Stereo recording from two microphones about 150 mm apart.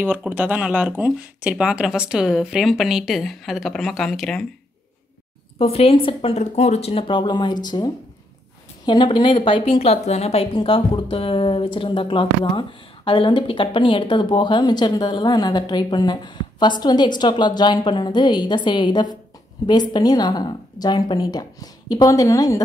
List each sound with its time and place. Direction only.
0.0 s speech: 10° right (ahead or behind)
5.6 s speech: 40° left (ahead or behind)
6.4 s a woman's voice: 45° left (ahead or behind); by 22.6 s 20° left (ahead or behind)